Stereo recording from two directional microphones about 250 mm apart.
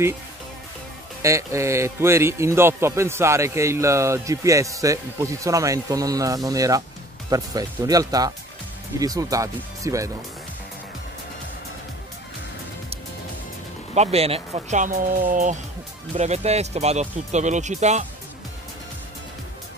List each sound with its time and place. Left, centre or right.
1.2 s a man's voice: centre
13.9 s speech: right